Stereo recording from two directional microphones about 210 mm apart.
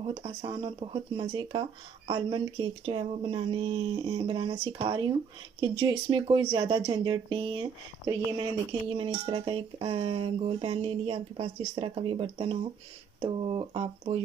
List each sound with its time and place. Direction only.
0.0 s speech: 25° right (ahead or behind)